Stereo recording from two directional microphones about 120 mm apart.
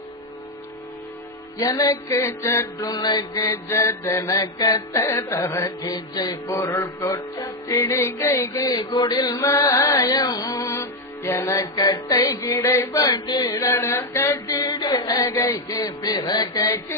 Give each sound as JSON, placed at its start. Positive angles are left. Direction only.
{"t": 1.6, "sound": "mantra", "side_deg": 30}
{"t": 2.9, "sound": "music", "side_deg": 35}
{"t": 3.5, "sound": "mantra", "side_deg": 20}
{"t": 9.6, "sound": "music", "side_deg": 30}
{"t": 10.6, "sound": "music", "side_deg": 25}
{"t": 11.5, "sound": "music", "side_deg": 35}
{"t": 12.5, "sound": "mantra", "side_deg": 20}
{"t": 13.1, "sound": "mantra", "side_deg": 35}
{"t": 14.8, "sound": "music", "side_deg": 35}